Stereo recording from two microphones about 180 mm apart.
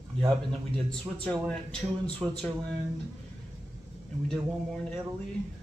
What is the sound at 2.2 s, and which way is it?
Speech, 5° right (ahead or behind).